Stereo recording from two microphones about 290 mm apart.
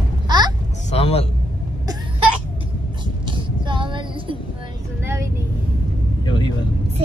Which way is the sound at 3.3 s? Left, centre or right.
Centre.